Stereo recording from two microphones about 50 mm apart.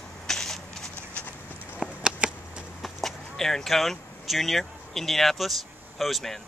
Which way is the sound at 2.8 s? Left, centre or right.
Centre.